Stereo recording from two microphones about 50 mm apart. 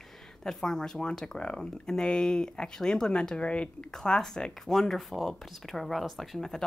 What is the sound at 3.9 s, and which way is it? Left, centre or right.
Speech, centre.